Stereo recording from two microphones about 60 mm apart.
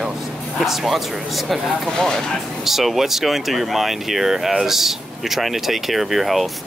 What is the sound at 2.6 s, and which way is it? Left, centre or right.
Speech, centre.